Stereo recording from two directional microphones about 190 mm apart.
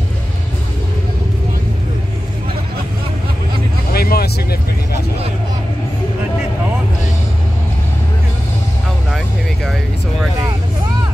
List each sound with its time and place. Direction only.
3.9 s vehicle: 55° left (ahead or behind)